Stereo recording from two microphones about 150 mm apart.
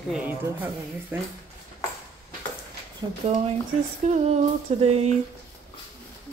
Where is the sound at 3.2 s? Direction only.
40° right (ahead or behind).